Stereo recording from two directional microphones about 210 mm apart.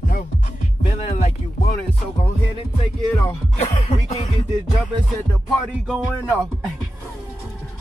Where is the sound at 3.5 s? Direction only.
30° left (ahead or behind).